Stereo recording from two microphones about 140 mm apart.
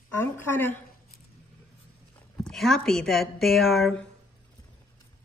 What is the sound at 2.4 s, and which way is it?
A woman's voice, centre (ahead or behind).